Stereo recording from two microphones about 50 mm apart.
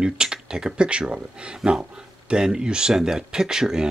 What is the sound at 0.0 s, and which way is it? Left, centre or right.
Speech, centre.